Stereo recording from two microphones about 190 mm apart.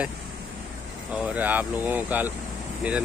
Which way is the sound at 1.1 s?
5° right (ahead or behind).